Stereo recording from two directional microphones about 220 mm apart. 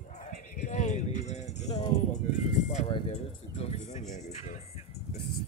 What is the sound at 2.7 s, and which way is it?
Music, 30° left (ahead or behind).